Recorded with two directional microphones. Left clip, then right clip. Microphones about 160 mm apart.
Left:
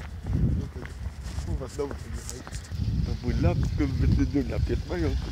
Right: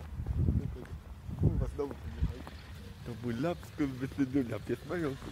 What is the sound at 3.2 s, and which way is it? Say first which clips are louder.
Speech: left 4 dB; 15° right (ahead or behind).